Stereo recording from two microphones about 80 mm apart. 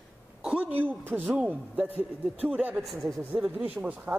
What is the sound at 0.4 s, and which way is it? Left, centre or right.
Speech, centre.